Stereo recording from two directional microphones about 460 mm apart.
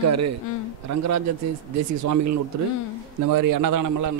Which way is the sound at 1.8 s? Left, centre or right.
Right.